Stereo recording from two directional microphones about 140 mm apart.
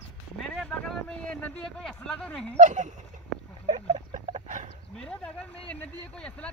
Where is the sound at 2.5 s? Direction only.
60° right (ahead or behind).